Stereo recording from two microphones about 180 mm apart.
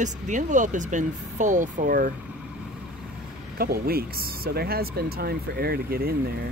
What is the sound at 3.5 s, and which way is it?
Speech, 55° right (ahead or behind).